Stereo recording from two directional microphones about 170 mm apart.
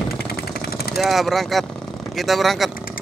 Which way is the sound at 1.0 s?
Centre (ahead or behind).